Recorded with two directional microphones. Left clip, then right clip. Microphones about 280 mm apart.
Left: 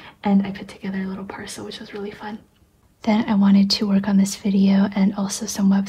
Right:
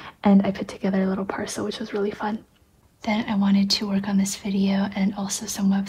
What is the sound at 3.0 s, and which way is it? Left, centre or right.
Speech, centre.